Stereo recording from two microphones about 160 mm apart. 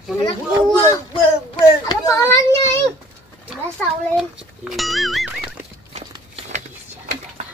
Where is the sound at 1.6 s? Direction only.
20° left (ahead or behind).